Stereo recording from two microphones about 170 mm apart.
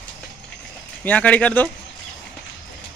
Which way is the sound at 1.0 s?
10° left (ahead or behind).